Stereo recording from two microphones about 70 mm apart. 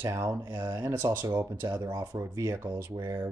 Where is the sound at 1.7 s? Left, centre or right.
Right.